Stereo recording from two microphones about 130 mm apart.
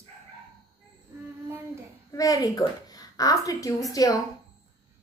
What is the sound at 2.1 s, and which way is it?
A woman's voice, 25° left (ahead or behind).